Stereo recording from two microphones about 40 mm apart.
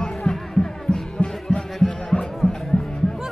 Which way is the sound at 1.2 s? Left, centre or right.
Left.